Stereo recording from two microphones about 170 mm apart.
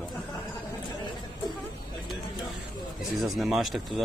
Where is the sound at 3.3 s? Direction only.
Centre (ahead or behind).